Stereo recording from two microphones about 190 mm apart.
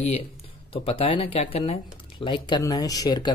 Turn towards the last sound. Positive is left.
turn(degrees=20)  # may be behind; listen again after turning